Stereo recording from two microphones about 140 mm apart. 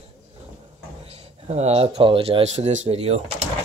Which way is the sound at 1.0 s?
50° right (ahead or behind).